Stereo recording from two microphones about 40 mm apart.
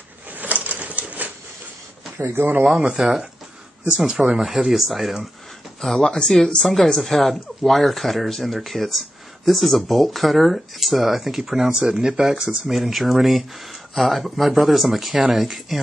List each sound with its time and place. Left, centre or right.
0.3 s a sound: right
2.1 s speech: right
2.7 s speech: centre
4.4 s speech: centre
5.8 s speech: centre
6.7 s speech: centre